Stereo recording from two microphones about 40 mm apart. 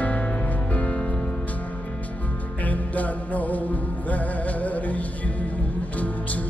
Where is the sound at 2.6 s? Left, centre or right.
Left.